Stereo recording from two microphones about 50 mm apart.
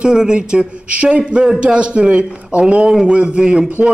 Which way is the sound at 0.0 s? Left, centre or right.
Centre.